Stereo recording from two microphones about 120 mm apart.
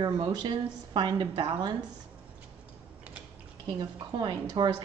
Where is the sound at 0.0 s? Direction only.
35° right (ahead or behind).